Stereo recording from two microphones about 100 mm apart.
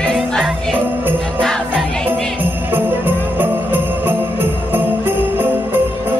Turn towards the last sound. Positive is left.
turn(degrees=-20)  # may be behind; listen again after turning